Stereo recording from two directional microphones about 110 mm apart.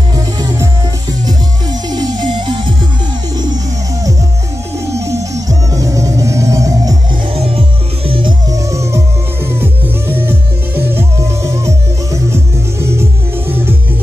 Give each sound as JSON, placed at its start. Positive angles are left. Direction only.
{"t": 1.2, "sound": "music", "side_deg": -40}
{"t": 4.9, "sound": "music", "side_deg": -30}
{"t": 7.3, "sound": "music", "side_deg": -60}
{"t": 8.1, "sound": "music", "side_deg": -50}
{"t": 8.5, "sound": "music", "side_deg": -30}